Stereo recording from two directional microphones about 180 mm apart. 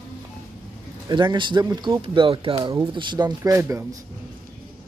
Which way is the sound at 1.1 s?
25° right (ahead or behind).